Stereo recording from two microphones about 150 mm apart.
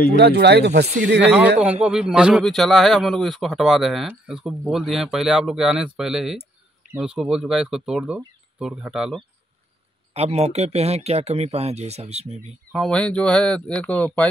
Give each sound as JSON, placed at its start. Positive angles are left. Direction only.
{"t": 0.1, "sound": "speech", "side_deg": -90}
{"t": 0.8, "sound": "speech", "side_deg": -55}
{"t": 1.2, "sound": "speech", "side_deg": -10}
{"t": 10.1, "sound": "speech", "side_deg": -45}
{"t": 12.7, "sound": "speech", "side_deg": 5}